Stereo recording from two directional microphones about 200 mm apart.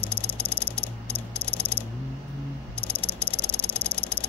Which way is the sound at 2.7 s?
30° left (ahead or behind).